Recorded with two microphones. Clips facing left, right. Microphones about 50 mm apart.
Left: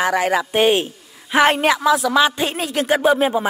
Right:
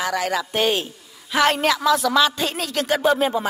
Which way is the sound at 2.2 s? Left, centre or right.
Centre.